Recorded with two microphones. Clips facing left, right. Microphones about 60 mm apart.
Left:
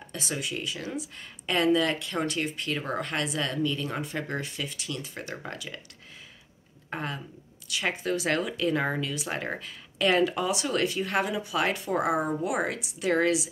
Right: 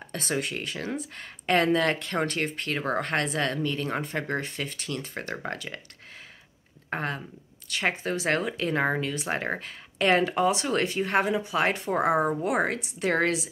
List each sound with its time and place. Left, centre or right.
0.1 s speech: right
6.9 s a woman's voice: right